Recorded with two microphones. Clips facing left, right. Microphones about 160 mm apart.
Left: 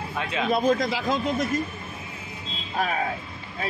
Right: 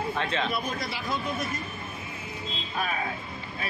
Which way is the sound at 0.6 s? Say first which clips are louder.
Left 10 dB; 90° left.